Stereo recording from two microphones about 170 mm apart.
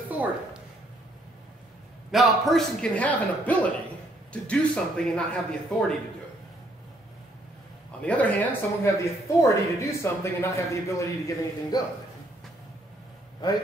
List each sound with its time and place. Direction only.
2.0 s a man's voice: centre (ahead or behind)
8.0 s a man's voice: 10° left (ahead or behind)